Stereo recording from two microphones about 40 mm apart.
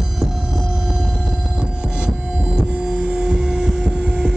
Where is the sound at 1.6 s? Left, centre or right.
Right.